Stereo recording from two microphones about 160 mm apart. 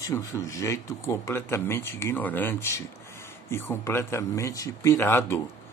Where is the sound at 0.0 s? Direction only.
15° left (ahead or behind).